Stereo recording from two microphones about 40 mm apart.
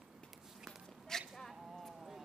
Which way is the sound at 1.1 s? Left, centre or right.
Centre.